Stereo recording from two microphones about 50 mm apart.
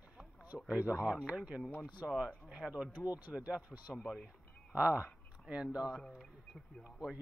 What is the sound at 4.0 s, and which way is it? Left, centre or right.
Speech, centre.